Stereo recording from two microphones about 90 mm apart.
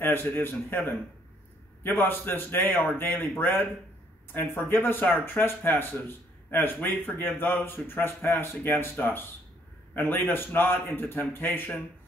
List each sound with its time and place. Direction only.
0.0 s speech: 25° left (ahead or behind)